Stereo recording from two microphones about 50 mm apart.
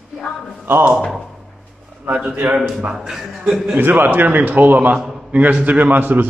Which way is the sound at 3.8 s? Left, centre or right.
Right.